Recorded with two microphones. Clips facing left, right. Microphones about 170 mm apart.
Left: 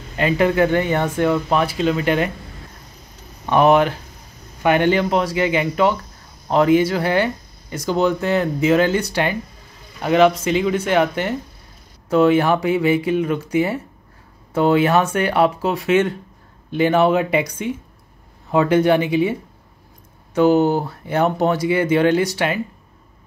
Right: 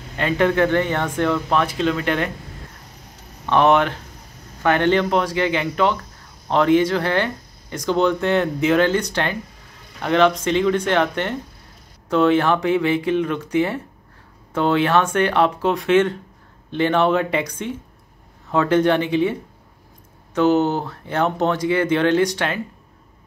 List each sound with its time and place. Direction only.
0.2 s speech: 10° left (ahead or behind)
3.4 s speech: 10° left (ahead or behind)
20.3 s speech: 10° left (ahead or behind)